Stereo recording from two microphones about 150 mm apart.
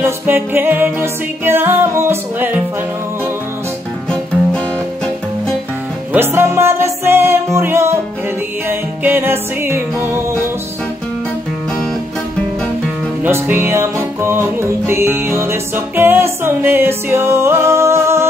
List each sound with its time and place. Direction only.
0.0 s music: 15° right (ahead or behind)
6.1 s music: 15° right (ahead or behind)
13.2 s music: 15° right (ahead or behind)